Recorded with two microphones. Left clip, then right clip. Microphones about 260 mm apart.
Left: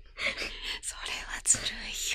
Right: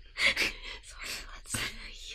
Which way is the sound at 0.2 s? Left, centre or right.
Right.